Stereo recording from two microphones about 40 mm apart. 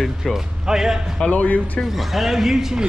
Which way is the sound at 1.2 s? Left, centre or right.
Left.